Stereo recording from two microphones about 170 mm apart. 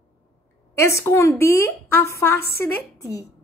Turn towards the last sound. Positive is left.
turn(degrees=15)  # may be behind; listen again after turning